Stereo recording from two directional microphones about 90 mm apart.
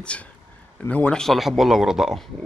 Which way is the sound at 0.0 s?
15° left (ahead or behind).